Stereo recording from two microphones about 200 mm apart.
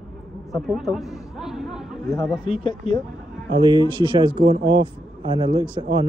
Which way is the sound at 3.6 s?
25° right (ahead or behind).